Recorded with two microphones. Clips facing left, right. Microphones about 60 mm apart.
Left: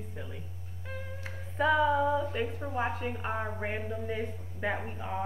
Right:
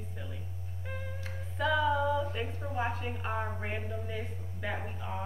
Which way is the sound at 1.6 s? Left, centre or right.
Left.